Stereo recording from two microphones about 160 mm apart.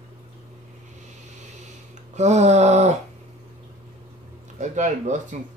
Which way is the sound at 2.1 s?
45° right (ahead or behind).